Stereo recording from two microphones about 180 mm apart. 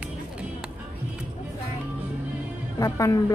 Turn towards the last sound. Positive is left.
turn(degrees=20)  # may be behind; listen again after turning